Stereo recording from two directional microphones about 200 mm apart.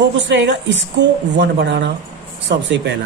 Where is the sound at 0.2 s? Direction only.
65° right (ahead or behind).